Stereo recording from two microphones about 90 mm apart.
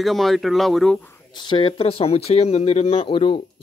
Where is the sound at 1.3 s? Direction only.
55° left (ahead or behind).